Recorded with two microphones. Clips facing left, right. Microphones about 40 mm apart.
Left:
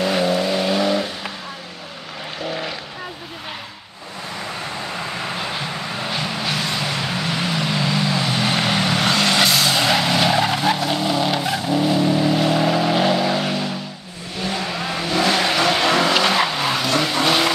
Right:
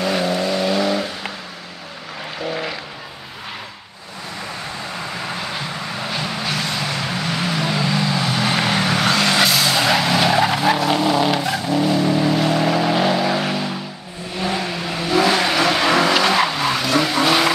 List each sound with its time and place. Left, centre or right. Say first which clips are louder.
0.0 s vehicle: left 1 dB; centre
2.4 s vehicle: right 2 dB; centre
5.2 s vehicle: left 1 dB; centre